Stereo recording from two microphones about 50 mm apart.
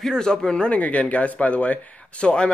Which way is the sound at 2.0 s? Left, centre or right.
Left.